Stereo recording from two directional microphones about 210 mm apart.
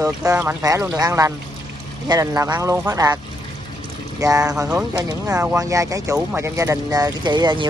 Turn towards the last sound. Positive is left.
turn(degrees=-20)  # may be behind; listen again after turning